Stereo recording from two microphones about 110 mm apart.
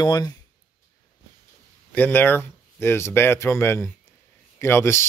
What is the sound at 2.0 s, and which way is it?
Speech, 15° left (ahead or behind).